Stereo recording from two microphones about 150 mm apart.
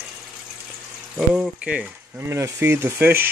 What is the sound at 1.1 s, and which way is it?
Speech, 5° right (ahead or behind).